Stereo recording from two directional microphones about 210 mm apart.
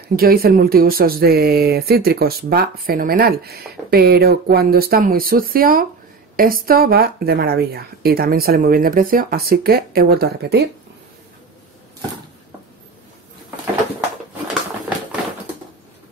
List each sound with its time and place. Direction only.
0.1 s speech: 45° right (ahead or behind)